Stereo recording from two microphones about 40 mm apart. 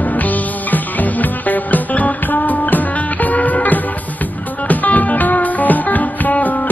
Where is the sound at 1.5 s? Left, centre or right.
Left.